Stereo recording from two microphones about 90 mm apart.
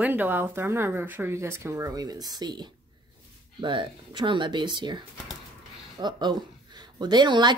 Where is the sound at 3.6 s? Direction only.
65° right (ahead or behind).